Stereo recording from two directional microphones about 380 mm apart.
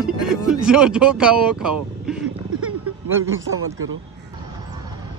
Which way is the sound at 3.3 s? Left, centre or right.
Right.